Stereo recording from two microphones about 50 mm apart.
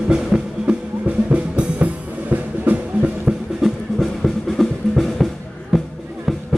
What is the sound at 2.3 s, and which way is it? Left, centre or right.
Music, right.